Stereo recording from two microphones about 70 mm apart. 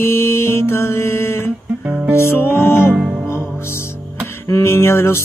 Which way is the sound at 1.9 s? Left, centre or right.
Right.